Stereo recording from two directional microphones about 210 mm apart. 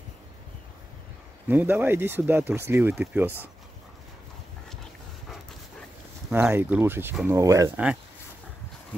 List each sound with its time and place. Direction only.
1.5 s speech: 10° right (ahead or behind)
6.3 s speech: 10° right (ahead or behind)